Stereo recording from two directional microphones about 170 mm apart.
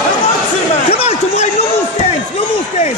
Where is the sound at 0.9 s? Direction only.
40° left (ahead or behind).